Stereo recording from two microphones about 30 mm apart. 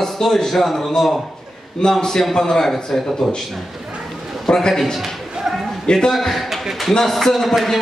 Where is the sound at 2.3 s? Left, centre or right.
Left.